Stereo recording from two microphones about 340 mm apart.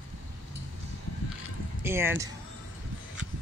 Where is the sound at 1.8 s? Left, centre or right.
Centre.